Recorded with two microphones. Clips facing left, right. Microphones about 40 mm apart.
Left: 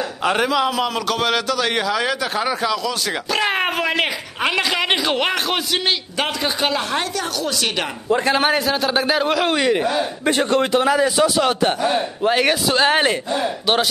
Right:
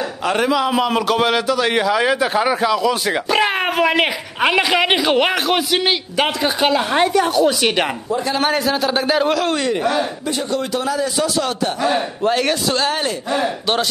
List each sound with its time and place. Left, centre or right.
0.2 s a man's voice: centre
0.7 s speech: right
6.9 s speech: centre
8.5 s a man's voice: centre
9.4 s a man's voice: centre
10.2 s a man's voice: left
10.7 s a man's voice: left
11.9 s a man's voice: centre
12.8 s a man's voice: left